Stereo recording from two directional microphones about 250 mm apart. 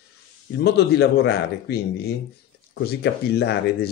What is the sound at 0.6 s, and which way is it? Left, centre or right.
Speech, left.